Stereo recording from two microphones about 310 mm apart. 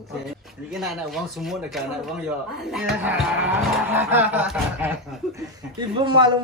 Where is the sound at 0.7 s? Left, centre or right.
Centre.